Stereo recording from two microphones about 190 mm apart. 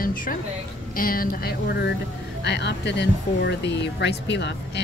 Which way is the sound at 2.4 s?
65° left (ahead or behind).